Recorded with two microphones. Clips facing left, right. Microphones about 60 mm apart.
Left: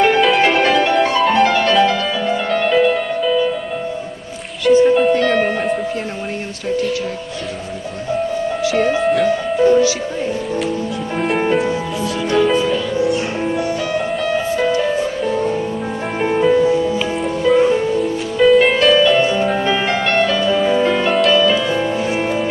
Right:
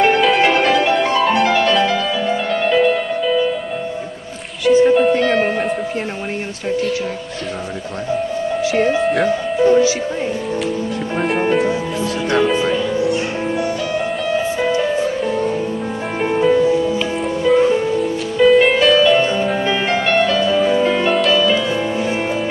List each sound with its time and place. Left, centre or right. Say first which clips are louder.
0.0 s music: even; centre
4.6 s music: even; centre
8.8 s speech: left 2 dB; centre
9.7 s music: even; right
11.1 s music: even; centre
13.9 s music: even; centre
16.2 s music: left 1 dB; centre